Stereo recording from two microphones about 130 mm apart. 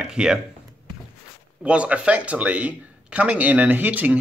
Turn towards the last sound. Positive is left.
turn(degrees=-10)  # may be behind; listen again after turning